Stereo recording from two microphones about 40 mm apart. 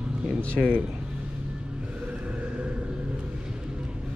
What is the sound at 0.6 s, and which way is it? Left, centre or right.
Speech, right.